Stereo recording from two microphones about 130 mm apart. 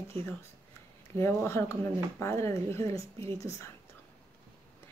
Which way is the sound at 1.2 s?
20° left (ahead or behind).